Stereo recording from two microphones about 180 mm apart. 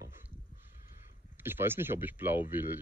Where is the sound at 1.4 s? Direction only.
10° right (ahead or behind).